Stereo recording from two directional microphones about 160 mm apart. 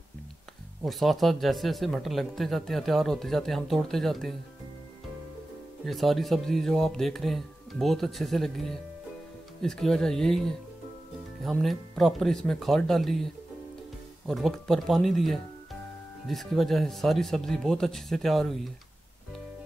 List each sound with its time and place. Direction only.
0.8 s speech: centre (ahead or behind)
5.9 s speech: centre (ahead or behind)